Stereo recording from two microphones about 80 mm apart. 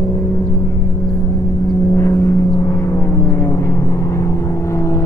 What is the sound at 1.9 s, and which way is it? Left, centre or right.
Vehicle, left.